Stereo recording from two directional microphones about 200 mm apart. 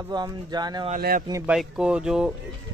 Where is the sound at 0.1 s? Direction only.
20° right (ahead or behind).